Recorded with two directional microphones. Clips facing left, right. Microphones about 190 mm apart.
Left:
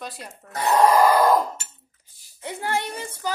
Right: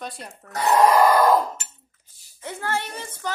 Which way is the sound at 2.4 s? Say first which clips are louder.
Left 1 dB; 15° left (ahead or behind).